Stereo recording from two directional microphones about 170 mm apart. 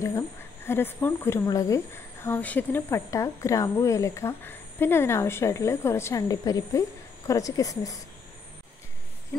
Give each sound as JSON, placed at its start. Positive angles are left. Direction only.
{"t": 0.7, "sound": "speech", "side_deg": 15}